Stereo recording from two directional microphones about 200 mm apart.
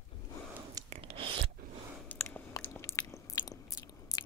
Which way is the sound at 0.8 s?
30° right (ahead or behind).